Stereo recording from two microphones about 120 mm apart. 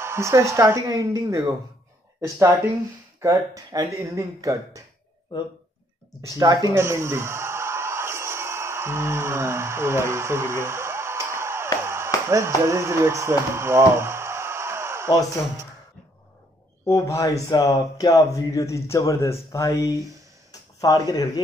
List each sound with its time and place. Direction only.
0.0 s speech: 25° right (ahead or behind)
6.3 s a sound: 30° right (ahead or behind)
11.8 s chop: 20° right (ahead or behind)
12.3 s speech: 25° right (ahead or behind)
16.8 s speech: 25° left (ahead or behind)